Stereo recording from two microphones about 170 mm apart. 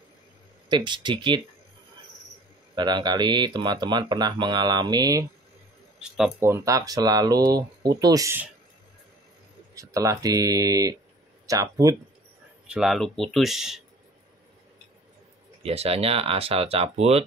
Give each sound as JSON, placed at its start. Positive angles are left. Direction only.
{"t": 0.7, "sound": "speech", "side_deg": -25}
{"t": 2.7, "sound": "speech", "side_deg": -25}
{"t": 5.9, "sound": "speech", "side_deg": -5}
{"t": 6.4, "sound": "speech", "side_deg": -15}
{"t": 9.8, "sound": "speech", "side_deg": -20}
{"t": 12.6, "sound": "speech", "side_deg": -5}
{"t": 15.6, "sound": "speech", "side_deg": -35}